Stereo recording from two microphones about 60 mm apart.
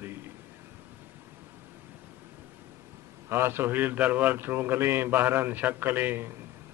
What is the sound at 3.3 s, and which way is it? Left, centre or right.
A man's voice, right.